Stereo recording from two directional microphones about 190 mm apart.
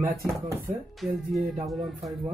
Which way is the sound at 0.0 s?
15° right (ahead or behind).